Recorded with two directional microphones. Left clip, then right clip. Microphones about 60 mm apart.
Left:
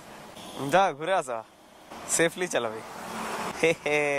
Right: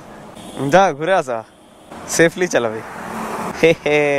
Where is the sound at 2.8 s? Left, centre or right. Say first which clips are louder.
Right 9 dB; left.